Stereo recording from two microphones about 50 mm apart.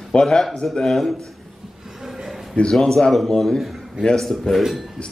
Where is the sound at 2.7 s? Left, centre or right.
Centre.